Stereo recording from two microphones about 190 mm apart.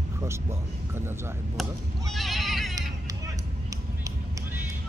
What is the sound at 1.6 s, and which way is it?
Speech, centre (ahead or behind).